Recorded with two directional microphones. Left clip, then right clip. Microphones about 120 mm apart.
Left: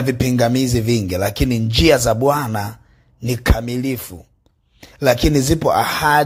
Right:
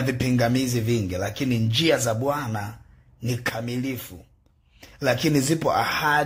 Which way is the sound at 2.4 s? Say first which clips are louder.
Left 8 dB; 45° left (ahead or behind).